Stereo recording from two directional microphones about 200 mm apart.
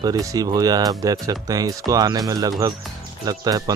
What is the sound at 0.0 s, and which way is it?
Speech, 15° right (ahead or behind).